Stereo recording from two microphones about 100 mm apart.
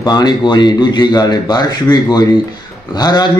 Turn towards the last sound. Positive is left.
turn(degrees=45)  # may be behind; listen again after turning